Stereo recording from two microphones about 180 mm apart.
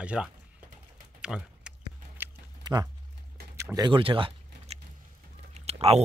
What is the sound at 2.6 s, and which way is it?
Speech, 25° right (ahead or behind).